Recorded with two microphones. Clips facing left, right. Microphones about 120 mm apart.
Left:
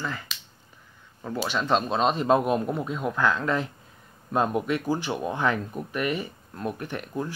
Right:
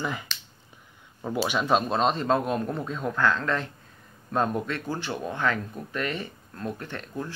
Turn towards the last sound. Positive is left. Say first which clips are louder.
# left 3 dB
turn(degrees=15)  # may be behind; listen again after turning